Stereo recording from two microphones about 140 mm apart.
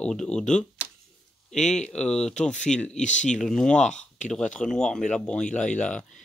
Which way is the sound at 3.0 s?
60° left (ahead or behind).